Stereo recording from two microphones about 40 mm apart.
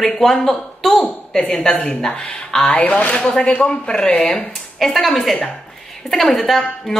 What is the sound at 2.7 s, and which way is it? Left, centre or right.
Speech, left.